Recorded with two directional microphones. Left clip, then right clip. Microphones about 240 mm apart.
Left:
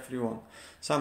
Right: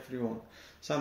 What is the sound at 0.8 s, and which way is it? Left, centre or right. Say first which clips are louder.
Speech: left 5 dB; right.